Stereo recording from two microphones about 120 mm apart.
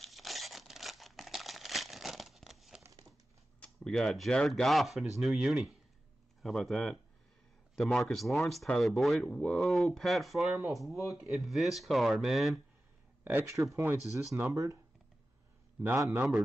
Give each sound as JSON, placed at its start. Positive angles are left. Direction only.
{"t": 0.0, "sound": "crumpling", "side_deg": 0}
{"t": 3.5, "sound": "speech", "side_deg": 10}
{"t": 13.2, "sound": "speech", "side_deg": -15}
{"t": 14.1, "sound": "speech", "side_deg": -25}
{"t": 16.1, "sound": "a man's voice", "side_deg": -15}